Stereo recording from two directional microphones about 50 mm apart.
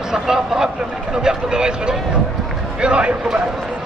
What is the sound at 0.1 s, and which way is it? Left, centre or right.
A man's voice, centre.